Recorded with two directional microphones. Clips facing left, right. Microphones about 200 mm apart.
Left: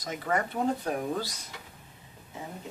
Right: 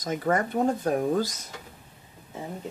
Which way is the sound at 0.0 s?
45° right (ahead or behind).